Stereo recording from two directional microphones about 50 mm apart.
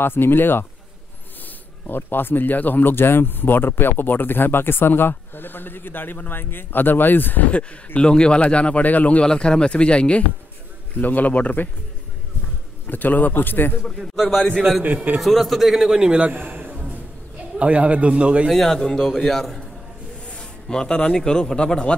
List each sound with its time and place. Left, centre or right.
0.0 s speech: left
1.9 s speech: left
8.0 s a man's voice: centre
9.2 s speech: centre
11.0 s a man's voice: left
12.8 s a man's voice: left
15.1 s a man's voice: centre; by 16.7 s right
17.6 s a man's voice: right
18.5 s a man's voice: centre
20.6 s a man's voice: centre